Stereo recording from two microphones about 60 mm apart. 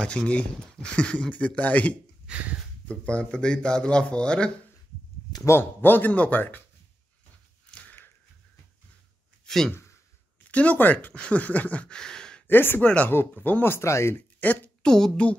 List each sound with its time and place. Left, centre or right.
0.0 s speech: centre
2.3 s speech: centre
2.9 s speech: centre
5.6 s speech: left
7.8 s a sound: left
9.5 s speech: centre
10.5 s speech: left
12.0 s a sound: centre
12.4 s speech: left
12.8 s speech: centre
13.1 s speech: left
14.1 s speech: left
14.8 s speech: centre